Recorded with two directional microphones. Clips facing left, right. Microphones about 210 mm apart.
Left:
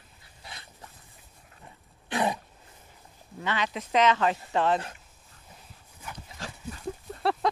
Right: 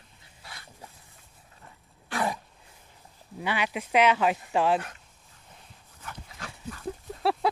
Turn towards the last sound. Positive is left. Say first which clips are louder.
# right 1 dB
turn(degrees=-5)  # may be behind; listen again after turning